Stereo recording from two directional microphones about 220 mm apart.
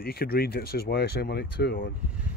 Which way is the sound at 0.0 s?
45° left (ahead or behind).